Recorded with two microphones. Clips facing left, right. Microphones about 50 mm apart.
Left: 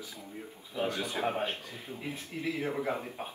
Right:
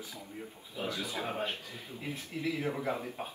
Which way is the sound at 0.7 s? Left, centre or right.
Left.